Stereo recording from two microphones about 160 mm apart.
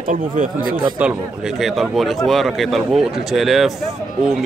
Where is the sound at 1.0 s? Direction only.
10° right (ahead or behind).